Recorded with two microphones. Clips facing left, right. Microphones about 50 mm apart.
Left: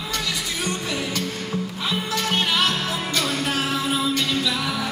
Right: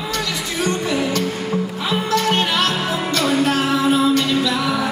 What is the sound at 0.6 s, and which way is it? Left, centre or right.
Music, centre.